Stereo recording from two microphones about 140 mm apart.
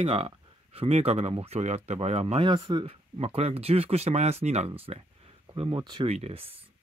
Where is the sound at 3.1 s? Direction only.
45° right (ahead or behind).